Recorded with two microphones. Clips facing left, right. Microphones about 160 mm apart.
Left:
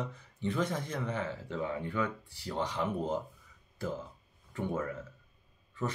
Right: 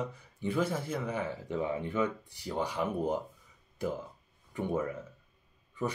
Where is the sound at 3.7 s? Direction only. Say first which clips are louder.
Right 3 dB; 15° right (ahead or behind).